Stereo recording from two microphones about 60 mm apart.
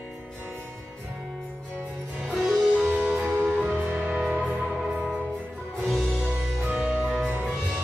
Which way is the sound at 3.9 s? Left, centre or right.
Right.